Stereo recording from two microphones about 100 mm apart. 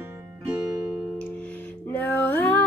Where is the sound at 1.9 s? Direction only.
20° left (ahead or behind).